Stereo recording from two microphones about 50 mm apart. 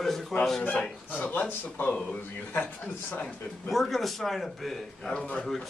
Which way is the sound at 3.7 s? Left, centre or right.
Centre.